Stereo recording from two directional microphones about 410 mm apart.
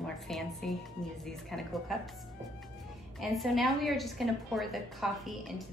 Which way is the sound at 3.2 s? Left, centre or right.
Centre.